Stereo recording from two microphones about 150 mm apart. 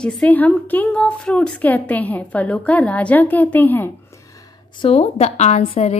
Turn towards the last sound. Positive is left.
turn(degrees=45)  # may be behind; listen again after turning